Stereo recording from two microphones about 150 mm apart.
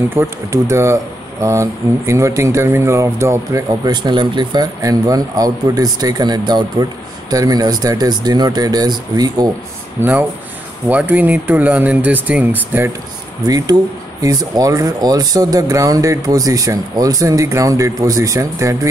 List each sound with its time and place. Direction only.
0.1 s speech: 20° right (ahead or behind)
9.9 s speech: 10° right (ahead or behind)
14.2 s speech: 25° right (ahead or behind)